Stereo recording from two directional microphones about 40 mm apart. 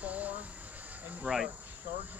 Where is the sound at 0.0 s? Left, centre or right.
Right.